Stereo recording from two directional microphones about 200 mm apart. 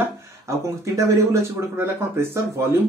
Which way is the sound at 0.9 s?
15° right (ahead or behind).